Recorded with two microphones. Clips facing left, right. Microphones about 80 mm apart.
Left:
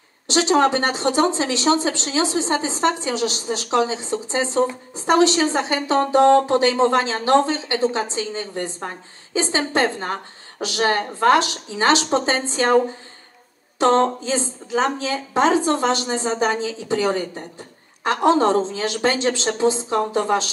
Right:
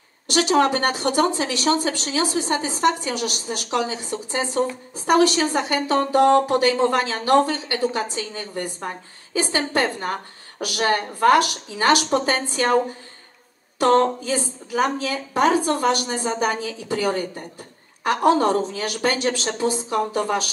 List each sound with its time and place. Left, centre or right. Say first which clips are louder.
0.3 s a woman's voice: left 1 dB; left
13.7 s a woman's voice: even; left